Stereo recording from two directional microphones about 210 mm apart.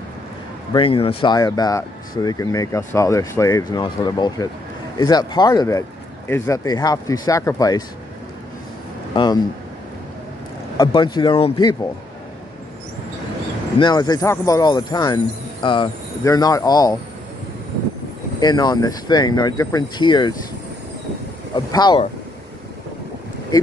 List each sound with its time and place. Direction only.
0.7 s speech: 25° left (ahead or behind)
9.1 s speech: 20° left (ahead or behind)
10.8 s speech: 20° left (ahead or behind)
13.7 s speech: 20° left (ahead or behind)
18.4 s speech: 20° left (ahead or behind)
21.5 s speech: 20° left (ahead or behind)